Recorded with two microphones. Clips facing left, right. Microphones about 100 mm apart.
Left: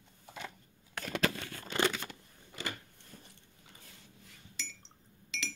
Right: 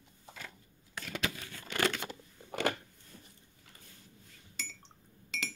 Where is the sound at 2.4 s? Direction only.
60° right (ahead or behind).